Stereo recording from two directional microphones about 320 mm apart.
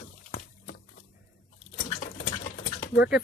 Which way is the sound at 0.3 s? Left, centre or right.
Left.